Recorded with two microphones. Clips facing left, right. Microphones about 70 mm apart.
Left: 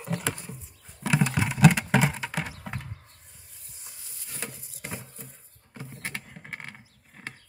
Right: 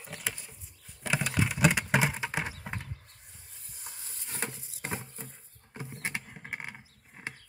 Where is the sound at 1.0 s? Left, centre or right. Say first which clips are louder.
Left 6 dB; centre.